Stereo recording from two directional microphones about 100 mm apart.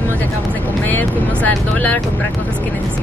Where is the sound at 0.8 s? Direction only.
15° left (ahead or behind).